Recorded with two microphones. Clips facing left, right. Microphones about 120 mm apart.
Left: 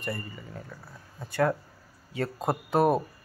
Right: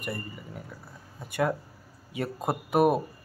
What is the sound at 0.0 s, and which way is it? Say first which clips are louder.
Speech: left 1 dB; 15° right (ahead or behind).